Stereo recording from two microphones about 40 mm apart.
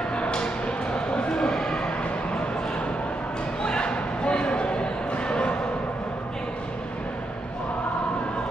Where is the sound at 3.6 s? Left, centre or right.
Left.